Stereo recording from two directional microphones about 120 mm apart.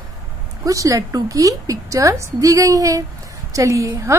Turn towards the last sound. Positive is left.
turn(degrees=-25)  # may be behind; listen again after turning